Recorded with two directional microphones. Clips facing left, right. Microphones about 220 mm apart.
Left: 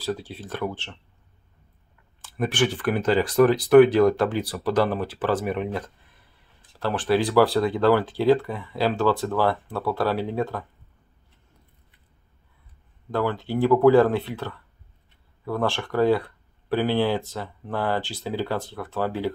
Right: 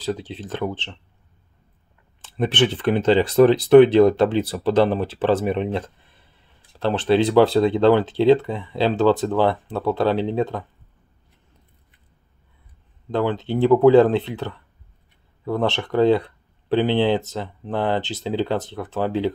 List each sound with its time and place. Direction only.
0.0 s speech: 20° right (ahead or behind)
2.2 s speech: 25° right (ahead or behind)
13.1 s speech: 20° right (ahead or behind)